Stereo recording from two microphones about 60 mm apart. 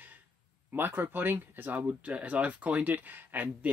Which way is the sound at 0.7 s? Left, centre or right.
Right.